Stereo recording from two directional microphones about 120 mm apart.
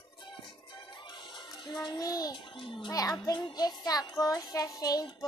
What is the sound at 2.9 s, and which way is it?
Child singing, 30° left (ahead or behind).